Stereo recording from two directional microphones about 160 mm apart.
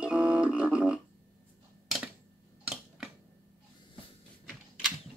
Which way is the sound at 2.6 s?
5° right (ahead or behind).